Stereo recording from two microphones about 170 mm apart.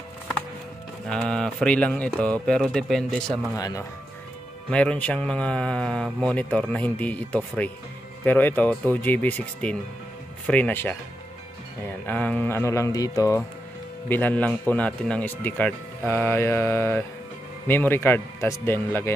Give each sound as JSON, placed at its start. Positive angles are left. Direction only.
{"t": 1.0, "sound": "speech", "side_deg": 5}
{"t": 3.5, "sound": "speech", "side_deg": 20}
{"t": 4.6, "sound": "a man's voice", "side_deg": 5}
{"t": 12.1, "sound": "a man's voice", "side_deg": 10}